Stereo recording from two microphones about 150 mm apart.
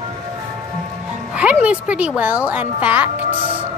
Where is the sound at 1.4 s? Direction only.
10° right (ahead or behind).